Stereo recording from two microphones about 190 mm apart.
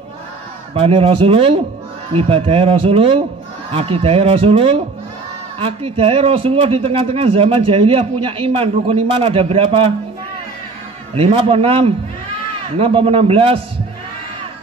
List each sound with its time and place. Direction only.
0.7 s a man's voice: 30° right (ahead or behind)
11.1 s a man's voice: 30° right (ahead or behind)